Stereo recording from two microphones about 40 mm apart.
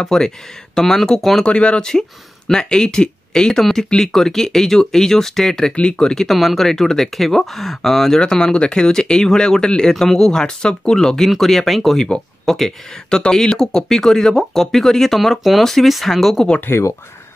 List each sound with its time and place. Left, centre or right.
0.0 s speech: centre
1.4 s speech: left
1.9 s speech: centre
5.8 s speech: left
6.3 s speech: centre
8.2 s speech: centre
13.1 s speech: centre
16.7 s speech: left